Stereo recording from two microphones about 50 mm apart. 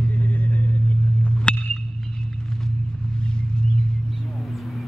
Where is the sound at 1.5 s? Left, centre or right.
Left.